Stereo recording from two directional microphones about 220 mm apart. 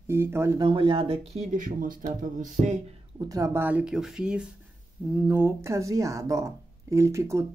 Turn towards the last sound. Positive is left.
turn(degrees=-15)  # may be behind; listen again after turning